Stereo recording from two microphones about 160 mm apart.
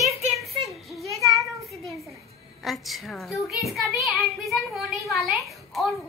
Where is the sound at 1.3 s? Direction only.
Centre (ahead or behind).